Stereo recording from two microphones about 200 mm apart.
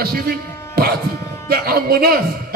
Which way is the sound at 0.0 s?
50° right (ahead or behind).